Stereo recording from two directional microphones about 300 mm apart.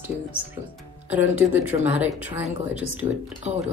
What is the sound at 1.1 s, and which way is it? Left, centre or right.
Speech, centre.